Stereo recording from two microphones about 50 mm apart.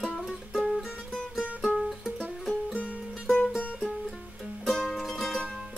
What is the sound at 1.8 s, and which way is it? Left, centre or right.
Music, centre.